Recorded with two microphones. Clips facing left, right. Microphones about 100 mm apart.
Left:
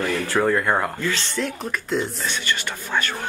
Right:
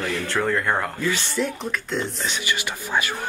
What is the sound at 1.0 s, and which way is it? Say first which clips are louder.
Speech: right 1 dB; 10° right (ahead or behind).